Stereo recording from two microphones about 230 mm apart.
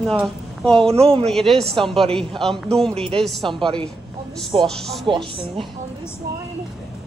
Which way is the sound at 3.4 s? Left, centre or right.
Right.